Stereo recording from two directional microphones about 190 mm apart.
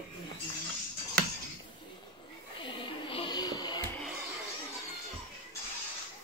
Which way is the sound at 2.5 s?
25° left (ahead or behind).